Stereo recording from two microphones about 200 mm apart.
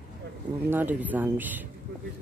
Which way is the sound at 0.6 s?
10° right (ahead or behind).